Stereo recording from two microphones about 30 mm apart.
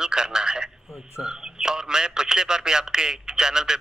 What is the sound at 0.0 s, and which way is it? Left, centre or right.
Telephone, right.